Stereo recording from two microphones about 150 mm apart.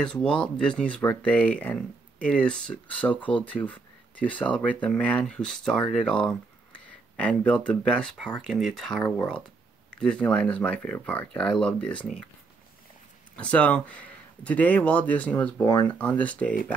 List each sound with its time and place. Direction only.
0.0 s speech: 5° left (ahead or behind)
13.4 s speech: 10° left (ahead or behind)
15.6 s speech: 30° left (ahead or behind)
15.9 s speech: 10° left (ahead or behind)